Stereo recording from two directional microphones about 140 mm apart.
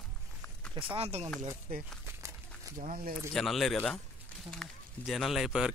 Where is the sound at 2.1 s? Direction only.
20° right (ahead or behind).